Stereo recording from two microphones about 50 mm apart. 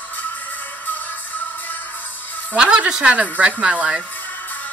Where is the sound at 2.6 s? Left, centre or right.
Centre.